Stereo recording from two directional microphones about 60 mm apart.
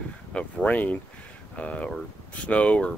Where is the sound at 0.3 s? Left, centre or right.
Centre.